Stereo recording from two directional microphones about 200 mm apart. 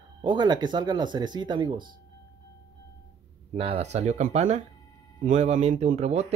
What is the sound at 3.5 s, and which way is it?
Speech, 30° right (ahead or behind).